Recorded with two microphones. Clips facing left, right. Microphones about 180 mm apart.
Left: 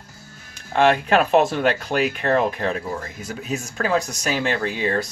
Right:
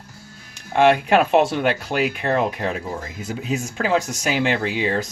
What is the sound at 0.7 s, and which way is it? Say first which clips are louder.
Speech: right 2 dB; 15° right (ahead or behind).